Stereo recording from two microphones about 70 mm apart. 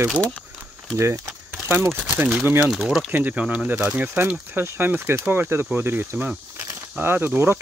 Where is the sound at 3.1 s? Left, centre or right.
Right.